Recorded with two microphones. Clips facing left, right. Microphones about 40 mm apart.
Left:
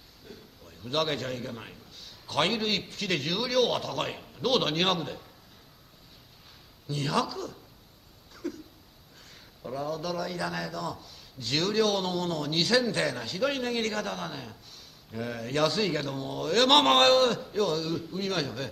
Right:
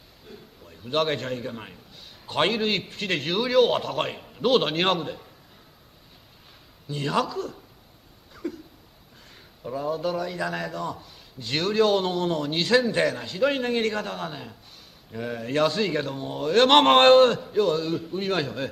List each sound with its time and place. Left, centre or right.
0.3 s a sound: centre
1.4 s a man's voice: centre
3.1 s a man's voice: centre
6.9 s a man's voice: centre
7.2 s a man's voice: centre
8.4 s a sound: right
9.6 s a sound: centre
9.8 s a man's voice: right
10.7 s a man's voice: right
11.4 s a man's voice: centre
17.4 s a man's voice: centre
17.8 s a man's voice: centre
18.1 s a man's voice: right